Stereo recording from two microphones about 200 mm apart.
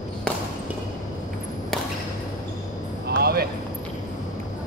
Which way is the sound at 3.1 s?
50° right (ahead or behind).